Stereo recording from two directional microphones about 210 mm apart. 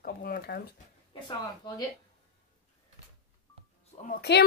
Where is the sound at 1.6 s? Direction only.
20° left (ahead or behind).